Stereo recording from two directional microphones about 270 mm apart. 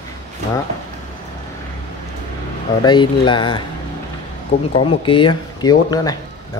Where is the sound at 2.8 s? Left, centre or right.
Centre.